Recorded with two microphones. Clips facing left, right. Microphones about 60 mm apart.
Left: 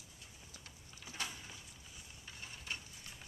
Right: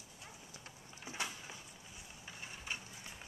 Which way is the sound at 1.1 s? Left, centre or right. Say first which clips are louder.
Right 2 dB; centre.